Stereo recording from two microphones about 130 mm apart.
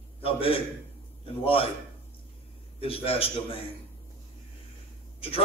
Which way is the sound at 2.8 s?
45° left (ahead or behind).